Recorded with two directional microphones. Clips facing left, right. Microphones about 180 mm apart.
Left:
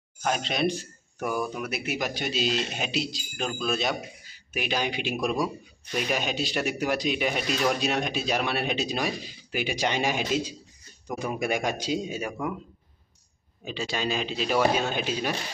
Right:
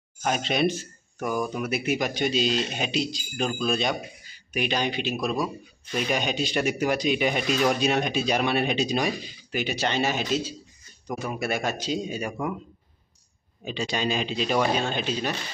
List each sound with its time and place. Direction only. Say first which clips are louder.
0.2 s a man's voice: right 2 dB; centre (ahead or behind)
5.9 s a man's voice: right 2 dB; centre (ahead or behind)
13.7 s speech: right 2 dB; centre (ahead or behind)